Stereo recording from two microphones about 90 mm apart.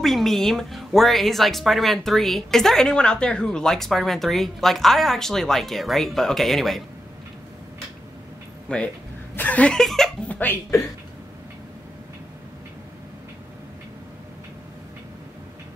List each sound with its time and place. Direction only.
0.0 s speech: centre (ahead or behind)
8.6 s speech: 10° left (ahead or behind)
10.2 s speech: 15° left (ahead or behind)